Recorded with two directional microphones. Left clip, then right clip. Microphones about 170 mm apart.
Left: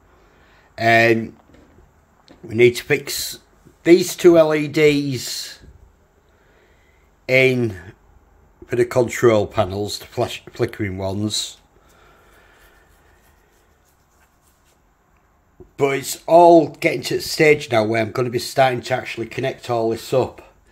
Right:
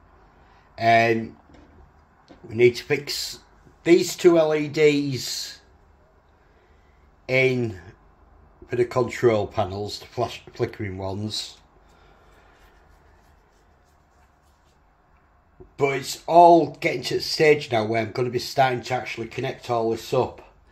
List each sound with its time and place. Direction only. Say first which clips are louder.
0.7 s speech: left 4 dB; 40° left (ahead or behind)
2.2 s speech: left 4 dB; 45° left (ahead or behind)
7.2 s speech: left 5 dB; 35° left (ahead or behind)
15.7 s speech: left 4 dB; 40° left (ahead or behind)